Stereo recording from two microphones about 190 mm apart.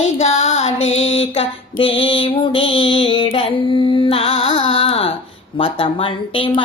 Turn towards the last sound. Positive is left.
turn(degrees=25)  # may be behind; listen again after turning